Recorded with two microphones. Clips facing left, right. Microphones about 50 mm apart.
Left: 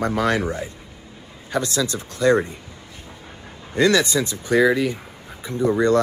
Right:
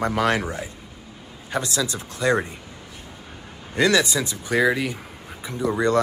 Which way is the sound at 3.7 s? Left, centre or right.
Right.